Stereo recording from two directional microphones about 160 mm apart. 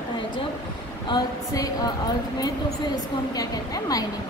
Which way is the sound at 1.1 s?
25° left (ahead or behind).